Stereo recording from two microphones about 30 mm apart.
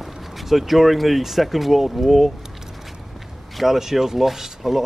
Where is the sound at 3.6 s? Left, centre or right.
Centre.